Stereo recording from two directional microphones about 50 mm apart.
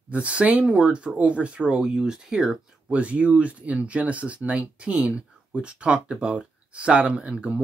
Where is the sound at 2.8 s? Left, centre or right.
Right.